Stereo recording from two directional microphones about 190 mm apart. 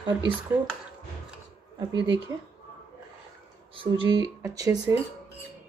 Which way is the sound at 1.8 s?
25° right (ahead or behind).